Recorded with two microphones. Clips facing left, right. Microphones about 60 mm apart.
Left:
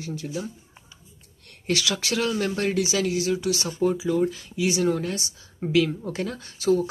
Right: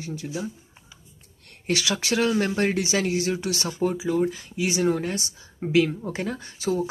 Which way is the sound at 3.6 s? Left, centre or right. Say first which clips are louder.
Left 1 dB; centre.